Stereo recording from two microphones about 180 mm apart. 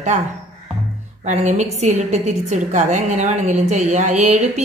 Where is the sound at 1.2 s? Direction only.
40° right (ahead or behind).